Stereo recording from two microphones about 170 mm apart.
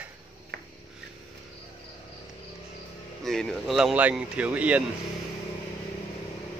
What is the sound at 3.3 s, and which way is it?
Speech, centre (ahead or behind).